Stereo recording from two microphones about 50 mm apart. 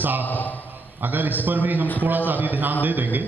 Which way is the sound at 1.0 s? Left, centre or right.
Right.